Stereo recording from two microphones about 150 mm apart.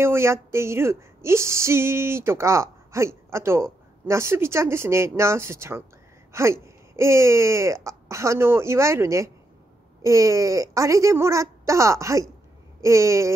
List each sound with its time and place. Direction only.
0.0 s speech: 15° right (ahead or behind)